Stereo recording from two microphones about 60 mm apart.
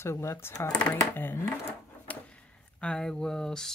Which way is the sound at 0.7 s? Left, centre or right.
Left.